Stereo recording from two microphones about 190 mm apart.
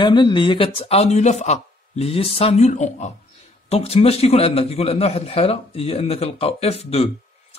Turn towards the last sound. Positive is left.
turn(degrees=30)  # may be behind; listen again after turning